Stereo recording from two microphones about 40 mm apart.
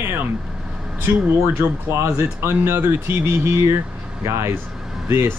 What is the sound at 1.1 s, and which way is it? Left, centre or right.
Speech, right.